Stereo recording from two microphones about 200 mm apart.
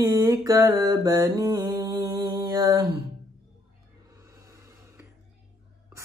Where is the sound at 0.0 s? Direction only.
15° right (ahead or behind).